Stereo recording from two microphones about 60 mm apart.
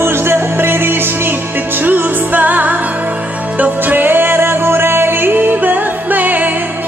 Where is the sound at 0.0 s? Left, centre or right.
Right.